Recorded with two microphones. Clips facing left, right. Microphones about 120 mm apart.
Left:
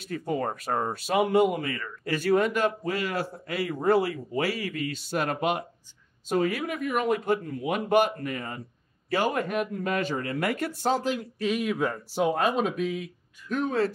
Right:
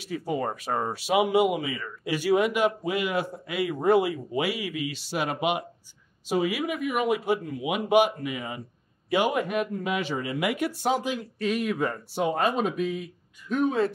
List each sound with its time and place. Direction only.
0.0 s speech: 5° right (ahead or behind)
10.4 s speech: 15° right (ahead or behind)
11.1 s speech: centre (ahead or behind)